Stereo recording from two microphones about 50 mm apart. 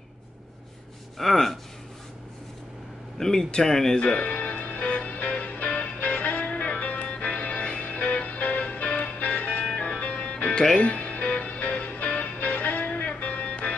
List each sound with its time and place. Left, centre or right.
1.1 s speech: centre
3.2 s speech: centre
4.0 s music: left